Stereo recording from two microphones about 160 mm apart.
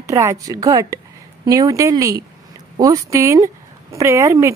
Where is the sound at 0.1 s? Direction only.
20° right (ahead or behind).